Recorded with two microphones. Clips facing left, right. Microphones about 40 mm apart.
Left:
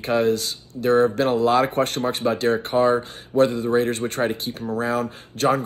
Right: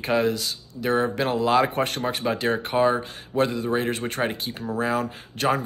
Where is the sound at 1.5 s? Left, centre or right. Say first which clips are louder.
Left 2 dB; right.